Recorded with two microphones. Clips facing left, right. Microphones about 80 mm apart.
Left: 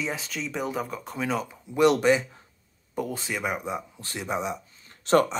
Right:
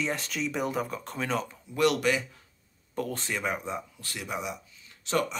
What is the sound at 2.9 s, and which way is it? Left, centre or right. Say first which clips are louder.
Speech: left 2 dB; centre.